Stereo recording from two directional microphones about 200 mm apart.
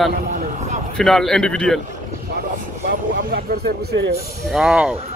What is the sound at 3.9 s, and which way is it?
Speech, 55° right (ahead or behind).